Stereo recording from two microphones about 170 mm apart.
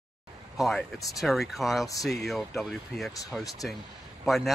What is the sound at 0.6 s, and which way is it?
Speech, centre (ahead or behind).